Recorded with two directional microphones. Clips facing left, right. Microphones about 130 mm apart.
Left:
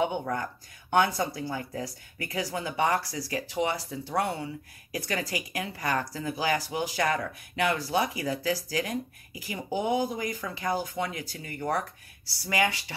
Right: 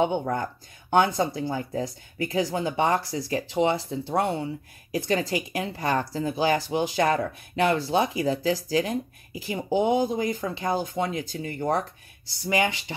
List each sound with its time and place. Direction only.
0.0 s speech: 25° right (ahead or behind)